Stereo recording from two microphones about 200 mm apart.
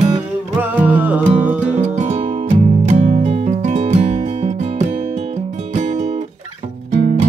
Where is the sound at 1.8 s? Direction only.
35° right (ahead or behind).